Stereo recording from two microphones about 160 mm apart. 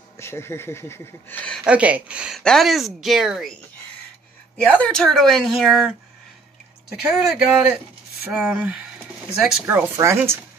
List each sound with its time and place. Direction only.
0.2 s speech: 15° left (ahead or behind)
1.6 s a woman's voice: 10° right (ahead or behind)
4.6 s a woman's voice: 5° left (ahead or behind)
7.2 s a woman's voice: 5° right (ahead or behind)